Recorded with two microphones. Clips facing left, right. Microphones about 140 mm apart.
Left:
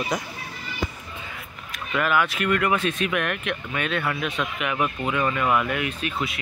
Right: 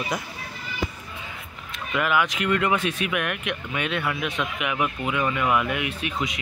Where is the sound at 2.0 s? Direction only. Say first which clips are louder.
Left 1 dB; 15° right (ahead or behind).